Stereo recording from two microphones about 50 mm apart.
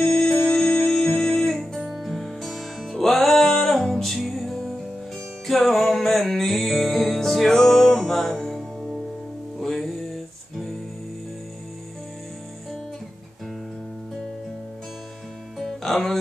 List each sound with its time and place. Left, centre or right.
0.0 s music: centre
1.8 s music: centre
9.6 s music: centre
15.6 s music: centre